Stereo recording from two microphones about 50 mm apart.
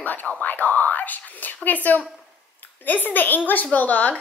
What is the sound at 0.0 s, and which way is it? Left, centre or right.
A woman's voice, left.